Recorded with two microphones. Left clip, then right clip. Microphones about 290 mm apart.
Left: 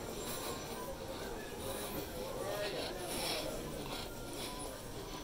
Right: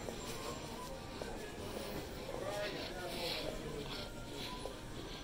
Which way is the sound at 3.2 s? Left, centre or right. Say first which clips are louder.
Left 2 dB; left.